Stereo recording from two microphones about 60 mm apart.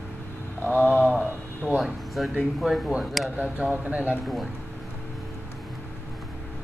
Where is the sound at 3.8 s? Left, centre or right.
Right.